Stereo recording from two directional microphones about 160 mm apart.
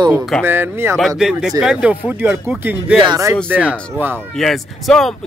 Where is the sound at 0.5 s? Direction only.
15° right (ahead or behind).